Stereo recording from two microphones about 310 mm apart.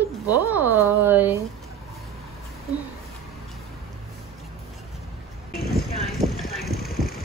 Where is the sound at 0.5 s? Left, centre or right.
Centre.